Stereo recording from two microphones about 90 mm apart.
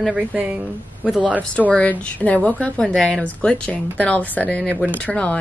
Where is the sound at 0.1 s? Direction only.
15° right (ahead or behind).